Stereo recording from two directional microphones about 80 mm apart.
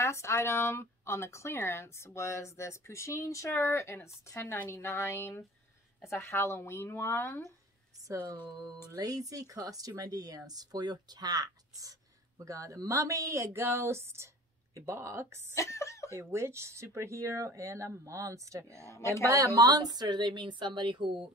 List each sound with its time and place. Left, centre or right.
0.0 s speech: left
8.9 s speech: right
15.5 s speech: left
16.2 s speech: right
18.9 s speech: left
19.2 s speech: right